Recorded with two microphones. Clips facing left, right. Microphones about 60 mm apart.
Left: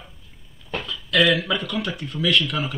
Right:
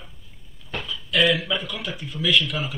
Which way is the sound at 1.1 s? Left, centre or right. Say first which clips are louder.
Left 2 dB; left.